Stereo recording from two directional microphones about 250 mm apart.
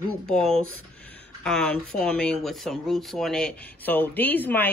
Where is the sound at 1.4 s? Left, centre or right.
Centre.